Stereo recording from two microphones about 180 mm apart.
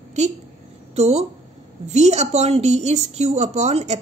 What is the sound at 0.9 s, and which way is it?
A woman's voice, 35° right (ahead or behind).